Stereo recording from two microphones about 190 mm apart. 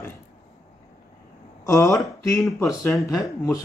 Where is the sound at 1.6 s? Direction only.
15° left (ahead or behind).